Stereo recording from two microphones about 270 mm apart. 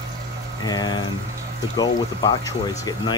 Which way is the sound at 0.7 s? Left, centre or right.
Centre.